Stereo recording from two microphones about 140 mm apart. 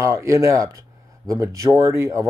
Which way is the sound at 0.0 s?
20° right (ahead or behind).